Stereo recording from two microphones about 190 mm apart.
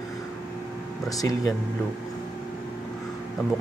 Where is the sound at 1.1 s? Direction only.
20° left (ahead or behind).